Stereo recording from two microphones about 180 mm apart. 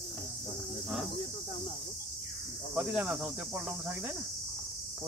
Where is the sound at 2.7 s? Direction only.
5° right (ahead or behind).